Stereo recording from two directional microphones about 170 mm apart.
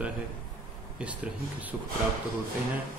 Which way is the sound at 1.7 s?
10° right (ahead or behind).